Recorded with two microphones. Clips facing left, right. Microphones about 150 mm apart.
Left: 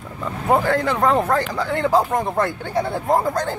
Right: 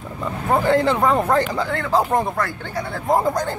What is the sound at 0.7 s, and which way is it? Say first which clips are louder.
Speech: right 3 dB; 25° right (ahead or behind).